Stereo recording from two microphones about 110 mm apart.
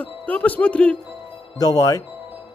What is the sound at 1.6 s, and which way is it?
Speech, 35° left (ahead or behind).